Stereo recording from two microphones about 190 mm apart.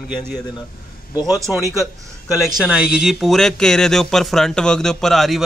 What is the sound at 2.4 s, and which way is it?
Speech, 5° right (ahead or behind).